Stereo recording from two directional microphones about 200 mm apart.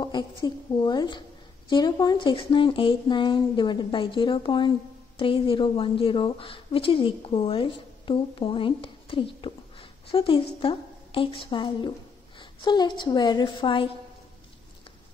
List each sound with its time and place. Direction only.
0.0 s speech: 20° left (ahead or behind)